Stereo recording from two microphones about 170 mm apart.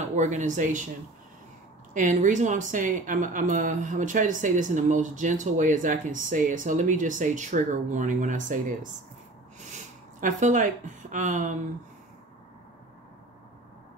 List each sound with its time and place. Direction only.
0.1 s speech: 45° right (ahead or behind)
2.0 s speech: 45° right (ahead or behind)
10.2 s speech: 50° right (ahead or behind)